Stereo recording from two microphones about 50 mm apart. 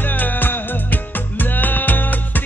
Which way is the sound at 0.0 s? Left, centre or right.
Left.